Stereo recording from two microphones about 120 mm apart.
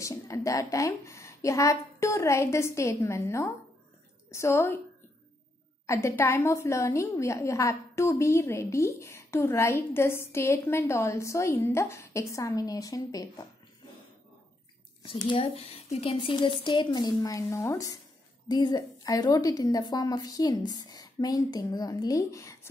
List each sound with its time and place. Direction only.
0.0 s a woman's voice: 25° left (ahead or behind)
5.9 s a woman's voice: 25° left (ahead or behind)
15.0 s speech: 45° left (ahead or behind)
15.5 s a woman's voice: 55° left (ahead or behind); by 22.7 s 25° left (ahead or behind)